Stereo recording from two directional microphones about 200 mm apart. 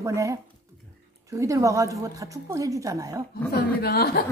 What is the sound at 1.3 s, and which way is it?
Speech, 15° right (ahead or behind).